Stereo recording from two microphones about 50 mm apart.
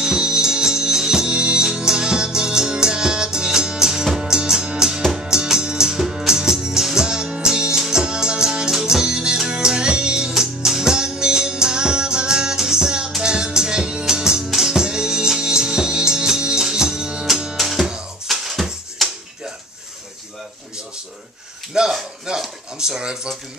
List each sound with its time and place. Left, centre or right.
0.0 s music: centre
17.6 s music: centre
17.8 s music: centre
18.3 s music: centre
21.7 s a sound: centre